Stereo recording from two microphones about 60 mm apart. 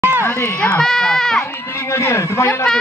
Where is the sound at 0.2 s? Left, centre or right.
Left.